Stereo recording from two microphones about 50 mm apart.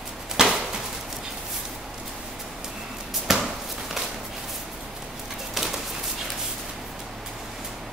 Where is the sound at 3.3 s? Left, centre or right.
Centre.